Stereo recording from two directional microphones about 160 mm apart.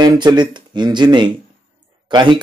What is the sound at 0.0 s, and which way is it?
Speech, 25° right (ahead or behind).